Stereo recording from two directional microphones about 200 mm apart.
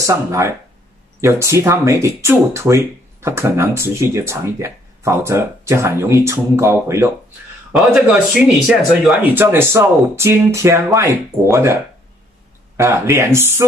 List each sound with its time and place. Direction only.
0.0 s speech: 15° right (ahead or behind)
7.7 s speech: centre (ahead or behind)